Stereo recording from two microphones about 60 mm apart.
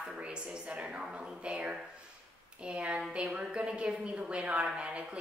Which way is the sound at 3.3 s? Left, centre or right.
Centre.